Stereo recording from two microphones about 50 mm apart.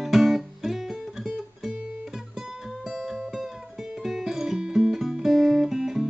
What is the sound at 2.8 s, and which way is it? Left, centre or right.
Music, centre.